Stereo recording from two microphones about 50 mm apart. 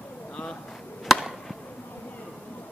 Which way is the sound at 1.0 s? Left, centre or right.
Centre.